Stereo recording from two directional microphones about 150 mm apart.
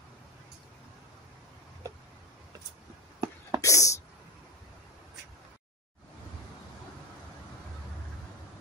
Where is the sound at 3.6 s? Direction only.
20° left (ahead or behind).